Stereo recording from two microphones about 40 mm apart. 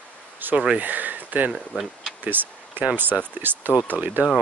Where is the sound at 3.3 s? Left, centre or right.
Right.